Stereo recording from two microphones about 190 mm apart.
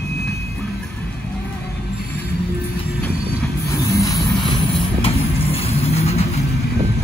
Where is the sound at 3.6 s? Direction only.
15° left (ahead or behind); by 6.4 s 35° left (ahead or behind).